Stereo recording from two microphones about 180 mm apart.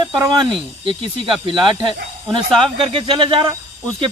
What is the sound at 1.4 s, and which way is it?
Speech, 30° right (ahead or behind).